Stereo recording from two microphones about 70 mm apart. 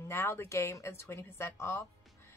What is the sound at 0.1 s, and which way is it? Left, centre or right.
A woman's voice, left.